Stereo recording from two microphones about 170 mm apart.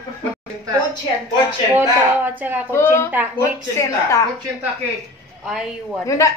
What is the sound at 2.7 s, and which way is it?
Speech, 15° left (ahead or behind).